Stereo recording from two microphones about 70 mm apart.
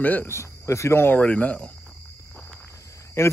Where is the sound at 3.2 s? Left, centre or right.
Left.